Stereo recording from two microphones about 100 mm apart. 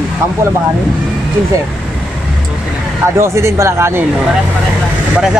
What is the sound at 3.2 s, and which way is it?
Speech, 30° right (ahead or behind).